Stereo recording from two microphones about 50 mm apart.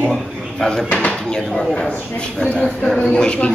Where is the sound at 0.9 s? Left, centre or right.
Left.